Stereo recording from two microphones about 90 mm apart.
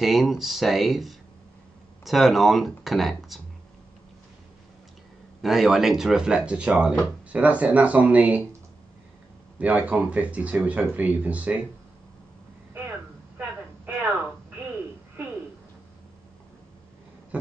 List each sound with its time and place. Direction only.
0.0 s speech: 5° right (ahead or behind)
5.4 s speech: centre (ahead or behind)
9.6 s speech: 15° right (ahead or behind)
12.7 s a sound: 20° right (ahead or behind)